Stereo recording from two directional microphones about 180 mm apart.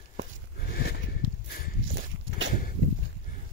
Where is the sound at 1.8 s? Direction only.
70° right (ahead or behind).